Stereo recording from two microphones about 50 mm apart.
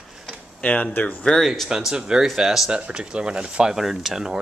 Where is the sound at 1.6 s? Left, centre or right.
Centre.